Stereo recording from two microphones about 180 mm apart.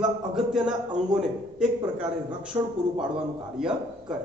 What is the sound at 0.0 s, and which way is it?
A man's voice, 5° right (ahead or behind).